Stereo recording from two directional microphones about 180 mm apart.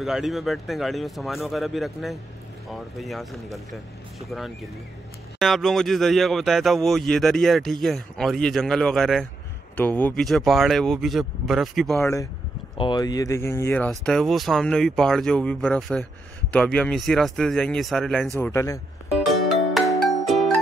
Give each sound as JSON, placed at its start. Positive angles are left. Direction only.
{"t": 0.0, "sound": "speech", "side_deg": 0}
{"t": 5.4, "sound": "speech", "side_deg": 0}
{"t": 12.0, "sound": "speech", "side_deg": 15}
{"t": 13.8, "sound": "speech", "side_deg": 5}
{"t": 18.4, "sound": "speech", "side_deg": 15}
{"t": 19.7, "sound": "music", "side_deg": 0}